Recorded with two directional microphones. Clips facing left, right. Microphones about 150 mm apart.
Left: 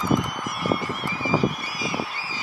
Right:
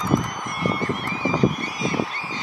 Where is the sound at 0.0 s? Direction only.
5° left (ahead or behind).